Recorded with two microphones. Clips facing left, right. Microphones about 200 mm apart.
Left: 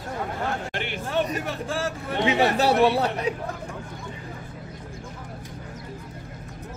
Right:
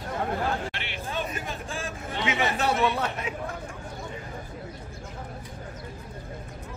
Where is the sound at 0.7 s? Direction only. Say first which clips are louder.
Left 5 dB; 50° left (ahead or behind).